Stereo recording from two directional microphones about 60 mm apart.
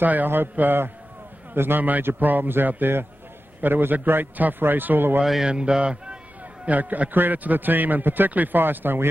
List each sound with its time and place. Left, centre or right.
0.0 s a man's voice: right
5.2 s speech: centre
5.5 s speech: centre
6.6 s a man's voice: right